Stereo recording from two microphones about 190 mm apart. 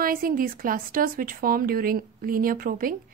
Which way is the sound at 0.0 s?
50° right (ahead or behind).